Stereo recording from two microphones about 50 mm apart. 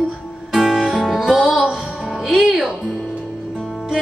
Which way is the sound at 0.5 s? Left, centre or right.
Centre.